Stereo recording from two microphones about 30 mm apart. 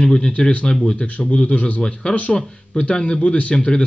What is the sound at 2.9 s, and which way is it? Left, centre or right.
Speech, left.